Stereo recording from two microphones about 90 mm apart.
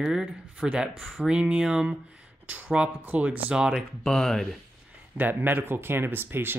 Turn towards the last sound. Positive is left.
turn(degrees=-25)  # may be behind; listen again after turning